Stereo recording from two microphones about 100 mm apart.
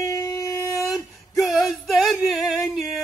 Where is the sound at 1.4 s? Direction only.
Centre (ahead or behind).